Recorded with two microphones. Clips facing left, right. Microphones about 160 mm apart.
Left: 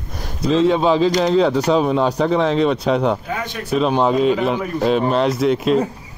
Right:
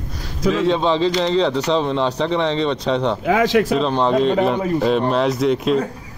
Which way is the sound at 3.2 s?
90° right.